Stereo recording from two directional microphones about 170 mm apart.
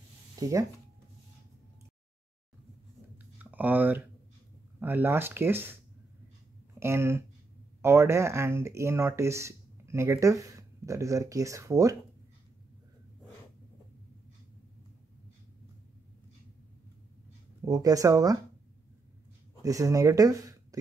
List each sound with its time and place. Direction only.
0.4 s speech: 20° right (ahead or behind)
3.5 s speech: 10° right (ahead or behind)
6.8 s speech: 15° right (ahead or behind)
17.6 s speech: 20° right (ahead or behind)
19.6 s speech: 20° right (ahead or behind)